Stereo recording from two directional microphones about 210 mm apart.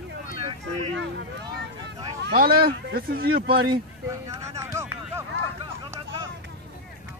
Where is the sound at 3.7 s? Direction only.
20° right (ahead or behind).